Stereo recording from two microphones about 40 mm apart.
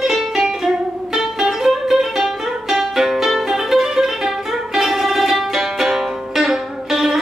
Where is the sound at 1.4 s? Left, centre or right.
Centre.